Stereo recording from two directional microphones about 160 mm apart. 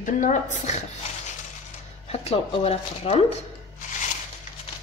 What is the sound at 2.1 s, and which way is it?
A woman's voice, 40° left (ahead or behind).